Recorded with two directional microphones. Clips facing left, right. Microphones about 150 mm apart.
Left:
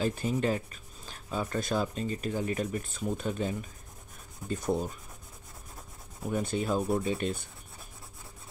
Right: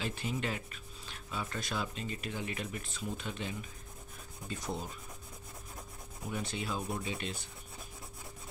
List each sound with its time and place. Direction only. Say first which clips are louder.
0.0 s speech: left 8 dB; 40° left (ahead or behind)
4.5 s rub: left 9 dB; 50° left (ahead or behind)
6.3 s rub: left 8 dB; 45° left (ahead or behind)